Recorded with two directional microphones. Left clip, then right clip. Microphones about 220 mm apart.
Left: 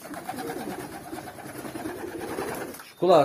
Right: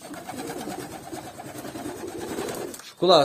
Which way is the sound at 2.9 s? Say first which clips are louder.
Right 1 dB; 15° right (ahead or behind).